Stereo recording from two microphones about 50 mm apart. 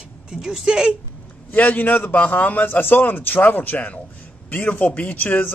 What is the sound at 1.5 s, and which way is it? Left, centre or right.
A man's voice, left.